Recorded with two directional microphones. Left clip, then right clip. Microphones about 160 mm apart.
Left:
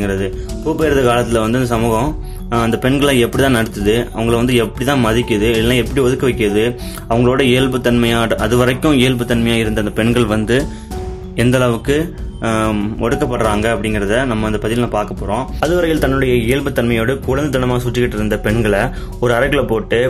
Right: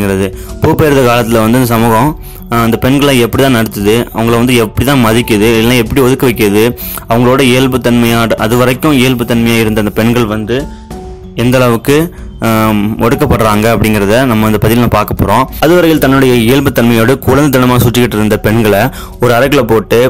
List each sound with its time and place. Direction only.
0.0 s speech: 35° right (ahead or behind)
11.3 s speech: 35° right (ahead or behind)